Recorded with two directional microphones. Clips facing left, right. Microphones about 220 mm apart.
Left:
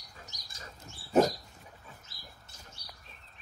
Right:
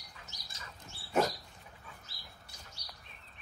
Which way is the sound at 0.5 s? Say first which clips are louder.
Left 3 dB; 40° left (ahead or behind).